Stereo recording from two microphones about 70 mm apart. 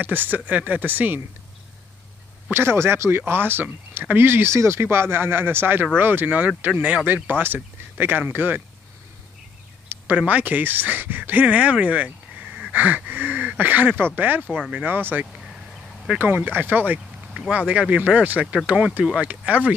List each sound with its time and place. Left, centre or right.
0.0 s speech: right
2.5 s speech: right
10.1 s speech: centre
15.0 s speech: right
16.3 s speech: right